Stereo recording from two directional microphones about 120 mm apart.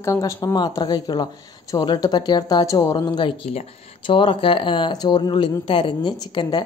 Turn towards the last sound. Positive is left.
turn(degrees=35)  # may be behind; listen again after turning